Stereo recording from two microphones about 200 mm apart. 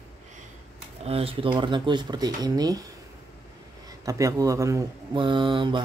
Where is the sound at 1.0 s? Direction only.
30° right (ahead or behind).